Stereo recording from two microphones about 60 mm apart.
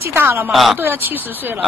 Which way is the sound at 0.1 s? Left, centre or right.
Right.